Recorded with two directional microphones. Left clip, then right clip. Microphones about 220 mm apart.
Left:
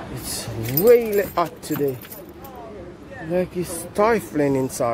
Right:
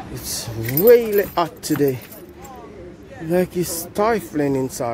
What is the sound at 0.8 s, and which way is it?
Speech, 15° right (ahead or behind).